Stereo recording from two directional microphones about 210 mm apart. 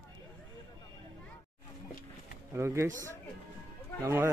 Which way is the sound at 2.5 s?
15° right (ahead or behind).